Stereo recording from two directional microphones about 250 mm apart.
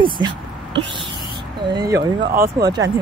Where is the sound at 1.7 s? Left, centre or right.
Centre.